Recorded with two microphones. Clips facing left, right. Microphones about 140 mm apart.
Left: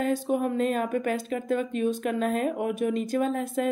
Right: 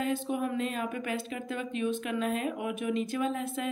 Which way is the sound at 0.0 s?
40° left (ahead or behind).